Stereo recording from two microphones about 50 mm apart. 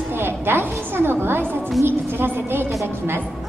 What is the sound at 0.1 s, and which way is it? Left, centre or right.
A woman's voice, right.